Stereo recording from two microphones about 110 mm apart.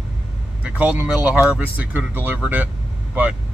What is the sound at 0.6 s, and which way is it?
Speech, 15° right (ahead or behind).